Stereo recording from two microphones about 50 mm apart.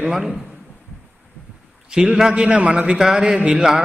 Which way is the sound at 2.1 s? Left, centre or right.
Centre.